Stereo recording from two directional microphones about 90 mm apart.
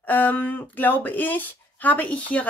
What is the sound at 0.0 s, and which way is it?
Speech, 20° left (ahead or behind).